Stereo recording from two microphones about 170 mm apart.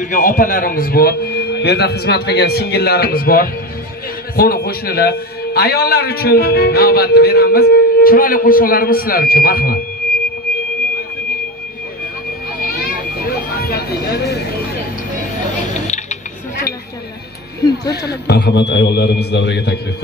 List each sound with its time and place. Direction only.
0.0 s a man's voice: 50° left (ahead or behind)
12.6 s vehicle: 60° left (ahead or behind)
18.0 s a man's voice: 75° left (ahead or behind)